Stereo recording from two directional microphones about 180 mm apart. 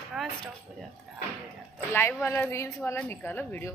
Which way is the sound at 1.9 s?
15° left (ahead or behind).